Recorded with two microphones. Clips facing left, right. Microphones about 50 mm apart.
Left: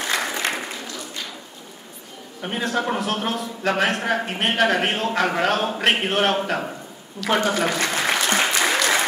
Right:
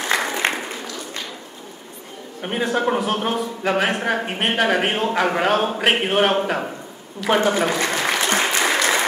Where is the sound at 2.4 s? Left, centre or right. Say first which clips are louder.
Right 3 dB; centre.